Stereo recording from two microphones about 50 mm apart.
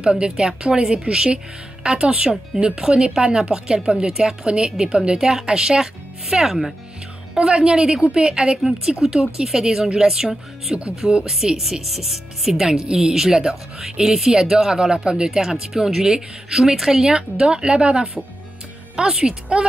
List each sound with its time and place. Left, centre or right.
0.0 s speech: centre